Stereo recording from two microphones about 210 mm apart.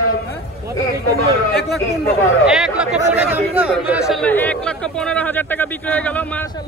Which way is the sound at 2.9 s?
30° right (ahead or behind).